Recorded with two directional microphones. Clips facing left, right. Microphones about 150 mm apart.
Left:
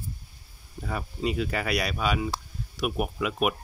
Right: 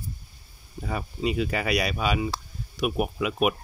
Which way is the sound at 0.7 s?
5° right (ahead or behind).